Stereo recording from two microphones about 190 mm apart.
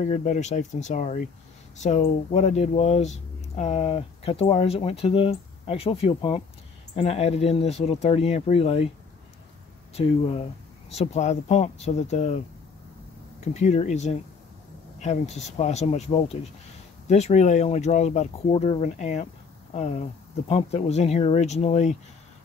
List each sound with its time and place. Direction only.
0.0 s speech: 40° left (ahead or behind)
9.9 s speech: 35° left (ahead or behind)
13.5 s speech: 35° left (ahead or behind)